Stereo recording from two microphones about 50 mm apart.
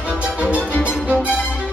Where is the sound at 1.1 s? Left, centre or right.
Right.